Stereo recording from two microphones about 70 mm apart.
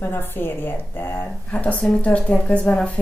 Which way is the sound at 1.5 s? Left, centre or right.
Centre.